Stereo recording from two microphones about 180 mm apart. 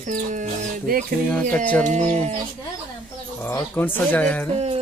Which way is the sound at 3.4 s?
10° left (ahead or behind).